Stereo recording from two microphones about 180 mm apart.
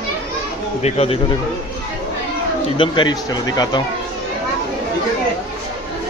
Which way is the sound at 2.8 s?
25° left (ahead or behind).